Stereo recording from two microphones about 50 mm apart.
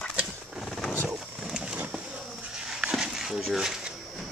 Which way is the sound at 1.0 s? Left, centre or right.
Centre.